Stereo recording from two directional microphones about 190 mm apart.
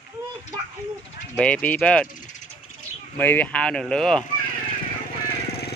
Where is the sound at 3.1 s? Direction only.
10° left (ahead or behind).